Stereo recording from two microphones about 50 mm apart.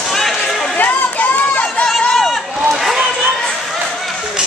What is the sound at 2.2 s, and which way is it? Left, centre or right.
Run, centre.